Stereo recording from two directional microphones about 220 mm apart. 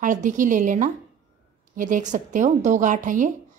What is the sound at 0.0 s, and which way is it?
A woman's voice, 35° right (ahead or behind).